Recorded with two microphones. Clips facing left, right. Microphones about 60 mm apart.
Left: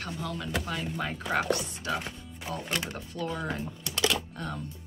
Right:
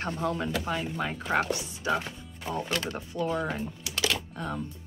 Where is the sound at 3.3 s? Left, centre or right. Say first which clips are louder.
Right 2 dB; centre.